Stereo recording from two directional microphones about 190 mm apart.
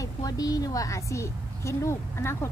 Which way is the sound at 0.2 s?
20° left (ahead or behind).